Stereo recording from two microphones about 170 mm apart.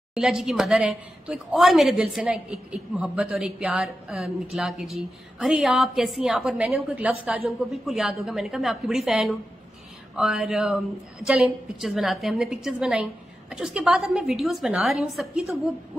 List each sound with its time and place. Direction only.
0.1 s a woman's voice: 5° right (ahead or behind)